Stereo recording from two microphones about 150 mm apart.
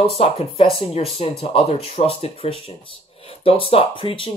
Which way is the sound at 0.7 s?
40° left (ahead or behind).